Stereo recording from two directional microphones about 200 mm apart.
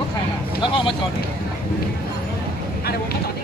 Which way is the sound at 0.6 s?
25° left (ahead or behind).